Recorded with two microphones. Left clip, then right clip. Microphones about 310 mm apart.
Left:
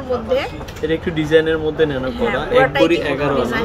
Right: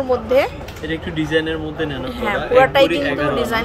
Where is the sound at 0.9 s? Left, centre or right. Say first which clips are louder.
Left 4 dB; centre.